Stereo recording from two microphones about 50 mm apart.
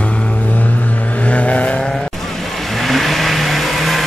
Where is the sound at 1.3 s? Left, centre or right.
Left.